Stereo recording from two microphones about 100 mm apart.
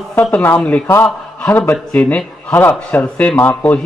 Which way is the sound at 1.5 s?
20° left (ahead or behind).